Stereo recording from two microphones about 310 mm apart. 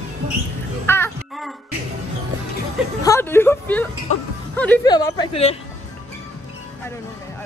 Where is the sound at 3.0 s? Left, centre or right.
Centre.